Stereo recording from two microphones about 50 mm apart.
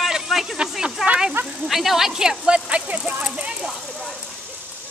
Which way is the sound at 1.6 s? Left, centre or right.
Centre.